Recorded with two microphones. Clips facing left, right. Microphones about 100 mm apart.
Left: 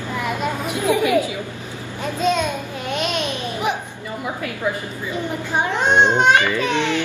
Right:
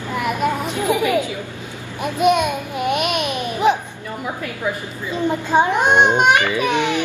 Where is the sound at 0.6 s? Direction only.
15° left (ahead or behind).